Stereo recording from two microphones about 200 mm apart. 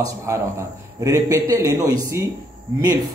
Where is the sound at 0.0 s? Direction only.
15° right (ahead or behind).